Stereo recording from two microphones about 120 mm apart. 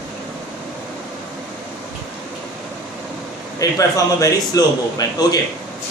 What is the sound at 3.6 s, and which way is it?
A man's voice, 30° left (ahead or behind).